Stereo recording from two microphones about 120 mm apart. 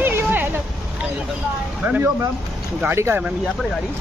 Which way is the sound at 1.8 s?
15° right (ahead or behind).